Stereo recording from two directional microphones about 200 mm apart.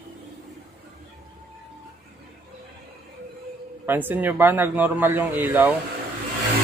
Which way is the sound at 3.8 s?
10° right (ahead or behind).